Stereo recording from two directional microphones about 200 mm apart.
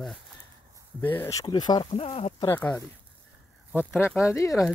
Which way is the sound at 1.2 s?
20° left (ahead or behind).